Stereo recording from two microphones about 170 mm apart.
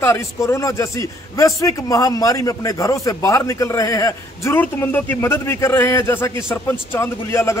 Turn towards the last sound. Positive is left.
turn(degrees=15)  # may be behind; listen again after turning